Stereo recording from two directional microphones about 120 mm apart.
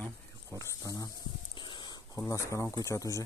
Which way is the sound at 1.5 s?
40° left (ahead or behind).